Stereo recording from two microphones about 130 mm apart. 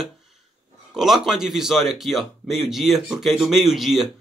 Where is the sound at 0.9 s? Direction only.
5° right (ahead or behind).